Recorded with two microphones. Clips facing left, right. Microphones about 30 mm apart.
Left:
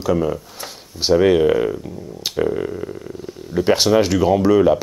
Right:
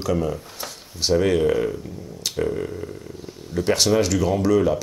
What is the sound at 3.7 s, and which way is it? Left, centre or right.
Speech, left.